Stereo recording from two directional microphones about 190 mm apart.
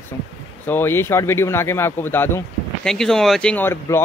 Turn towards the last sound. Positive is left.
turn(degrees=10)  # may be behind; listen again after turning